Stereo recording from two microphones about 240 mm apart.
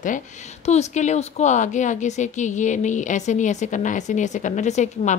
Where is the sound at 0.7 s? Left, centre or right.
Left.